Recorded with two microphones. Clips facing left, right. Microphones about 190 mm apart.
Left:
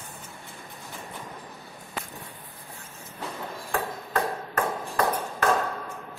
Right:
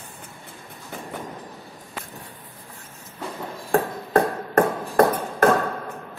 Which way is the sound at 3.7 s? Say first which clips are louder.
Right 9 dB; 50° right (ahead or behind).